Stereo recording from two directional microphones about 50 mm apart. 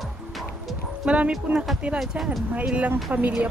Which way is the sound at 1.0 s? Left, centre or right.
Right.